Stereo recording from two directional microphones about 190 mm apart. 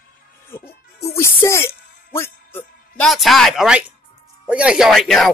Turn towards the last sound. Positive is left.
turn(degrees=0)  # may be behind; listen again after turning